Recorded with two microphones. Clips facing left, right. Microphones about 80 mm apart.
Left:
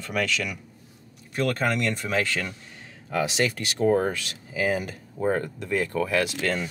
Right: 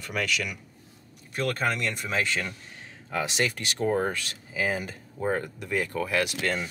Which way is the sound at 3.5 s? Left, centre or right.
Left.